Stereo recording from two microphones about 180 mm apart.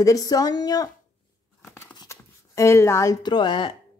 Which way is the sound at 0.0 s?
20° left (ahead or behind).